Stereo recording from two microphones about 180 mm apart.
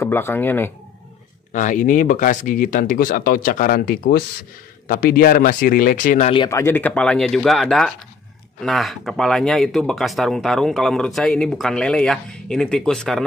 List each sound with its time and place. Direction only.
0.0 s speech: 10° left (ahead or behind)
1.5 s speech: 45° left (ahead or behind)
6.5 s speech: 15° left (ahead or behind)